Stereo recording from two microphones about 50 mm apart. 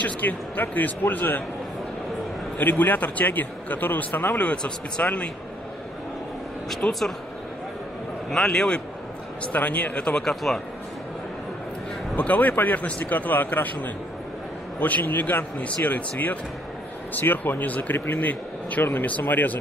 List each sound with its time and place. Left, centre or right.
0.0 s a man's voice: left
2.6 s a man's voice: left
4.4 s speech: left
6.8 s speech: left
8.3 s a man's voice: centre
9.5 s a man's voice: left
10.4 s a man's voice: centre
12.2 s a man's voice: left
17.9 s speech: left
19.0 s a man's voice: left